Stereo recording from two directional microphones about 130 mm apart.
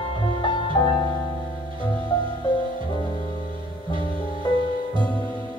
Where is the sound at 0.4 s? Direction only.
35° left (ahead or behind).